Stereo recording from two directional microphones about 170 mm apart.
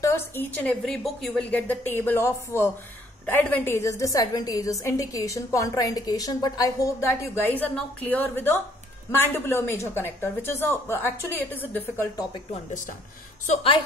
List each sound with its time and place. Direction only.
0.0 s a woman's voice: 15° left (ahead or behind)
13.5 s a woman's voice: 30° left (ahead or behind)